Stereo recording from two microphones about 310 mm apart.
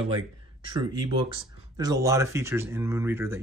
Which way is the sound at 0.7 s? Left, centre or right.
Centre.